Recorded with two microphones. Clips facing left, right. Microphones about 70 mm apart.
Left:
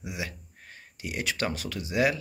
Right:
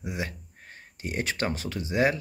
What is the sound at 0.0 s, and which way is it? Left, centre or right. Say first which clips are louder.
Speech: right 3 dB; right.